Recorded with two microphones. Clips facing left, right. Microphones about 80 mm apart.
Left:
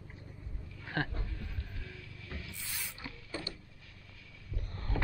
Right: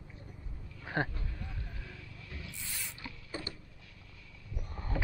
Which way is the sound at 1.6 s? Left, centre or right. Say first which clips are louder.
Even; centre.